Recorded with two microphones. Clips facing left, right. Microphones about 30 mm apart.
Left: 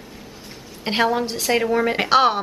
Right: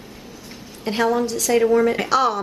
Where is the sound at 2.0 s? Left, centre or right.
Left.